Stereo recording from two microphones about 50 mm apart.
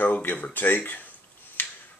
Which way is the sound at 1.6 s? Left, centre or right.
Left.